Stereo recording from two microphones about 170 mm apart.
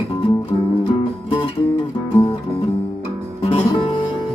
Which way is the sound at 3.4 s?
35° left (ahead or behind).